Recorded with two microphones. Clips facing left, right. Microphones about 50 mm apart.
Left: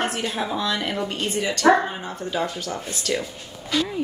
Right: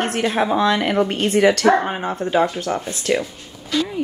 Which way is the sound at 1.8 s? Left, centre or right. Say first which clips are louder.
Right 6 dB; right.